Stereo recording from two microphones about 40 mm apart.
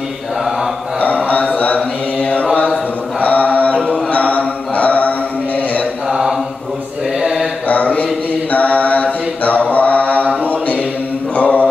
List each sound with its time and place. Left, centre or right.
1.3 s a sound: left
2.1 s mantra: left
7.2 s mantra: centre
7.6 s mantra: left
11.3 s mantra: left